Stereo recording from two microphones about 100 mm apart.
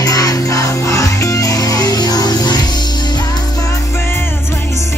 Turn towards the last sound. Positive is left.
turn(degrees=45)  # may be behind; listen again after turning